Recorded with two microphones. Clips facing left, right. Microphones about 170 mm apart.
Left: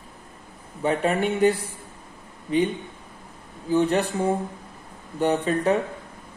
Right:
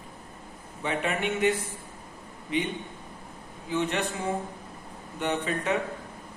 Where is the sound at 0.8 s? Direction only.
35° left (ahead or behind).